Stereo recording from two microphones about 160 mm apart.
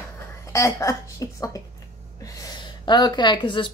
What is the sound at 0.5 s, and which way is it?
A woman's voice, 15° left (ahead or behind).